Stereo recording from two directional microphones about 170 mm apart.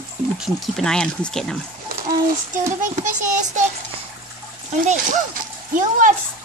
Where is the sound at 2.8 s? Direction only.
45° right (ahead or behind).